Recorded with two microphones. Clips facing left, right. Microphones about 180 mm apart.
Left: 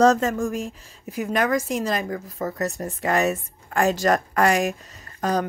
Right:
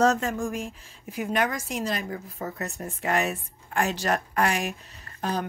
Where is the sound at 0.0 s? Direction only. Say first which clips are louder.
Left 5 dB; 40° left (ahead or behind).